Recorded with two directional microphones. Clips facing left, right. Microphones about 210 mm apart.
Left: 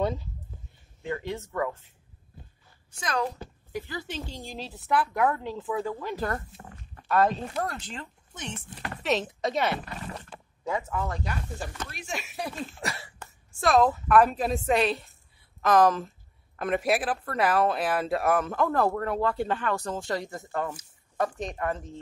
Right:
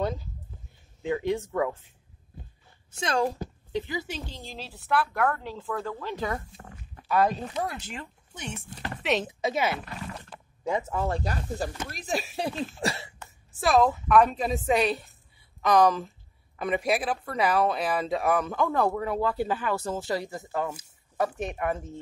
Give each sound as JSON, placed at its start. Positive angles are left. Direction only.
{"t": 1.0, "sound": "speech", "side_deg": -15}
{"t": 2.9, "sound": "a woman's voice", "side_deg": -25}
{"t": 3.7, "sound": "speech", "side_deg": -15}
{"t": 4.3, "sound": "speech", "side_deg": 15}
{"t": 5.1, "sound": "speech", "side_deg": 5}
{"t": 9.0, "sound": "speech", "side_deg": 0}
{"t": 10.6, "sound": "speech", "side_deg": -20}
{"t": 13.5, "sound": "speech", "side_deg": 0}